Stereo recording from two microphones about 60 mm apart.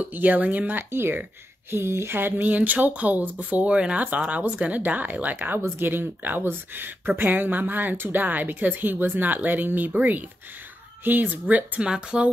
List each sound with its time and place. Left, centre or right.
0.0 s speech: right
11.8 s speech: centre